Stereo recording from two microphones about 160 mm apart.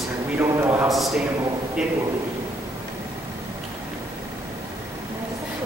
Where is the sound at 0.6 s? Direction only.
10° right (ahead or behind).